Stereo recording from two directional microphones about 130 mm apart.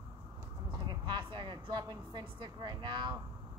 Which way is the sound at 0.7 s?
35° right (ahead or behind).